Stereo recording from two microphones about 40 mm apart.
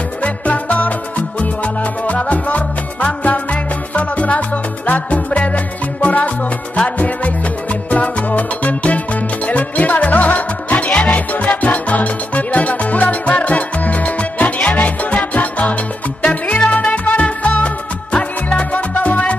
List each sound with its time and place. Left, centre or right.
0.2 s music: left
2.0 s music: left
7.9 s music: left